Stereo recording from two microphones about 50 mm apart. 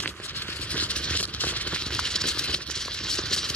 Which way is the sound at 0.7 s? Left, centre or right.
Left.